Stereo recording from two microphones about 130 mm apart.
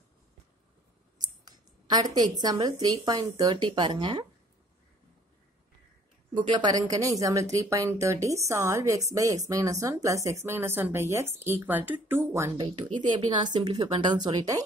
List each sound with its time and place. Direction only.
1.2 s speech: 35° right (ahead or behind)
6.5 s speech: 30° right (ahead or behind)
12.5 s a woman's voice: 40° right (ahead or behind)